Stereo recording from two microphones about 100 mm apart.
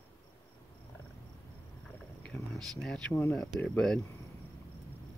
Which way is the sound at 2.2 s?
5° left (ahead or behind).